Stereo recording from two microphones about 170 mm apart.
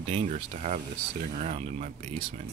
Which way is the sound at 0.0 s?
40° right (ahead or behind).